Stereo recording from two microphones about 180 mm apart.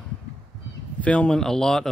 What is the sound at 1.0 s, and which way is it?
Speech, 5° left (ahead or behind).